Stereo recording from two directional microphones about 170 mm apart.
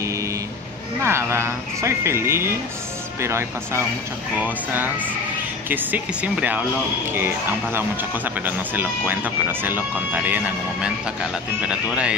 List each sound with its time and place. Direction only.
1.0 s speech: 15° right (ahead or behind)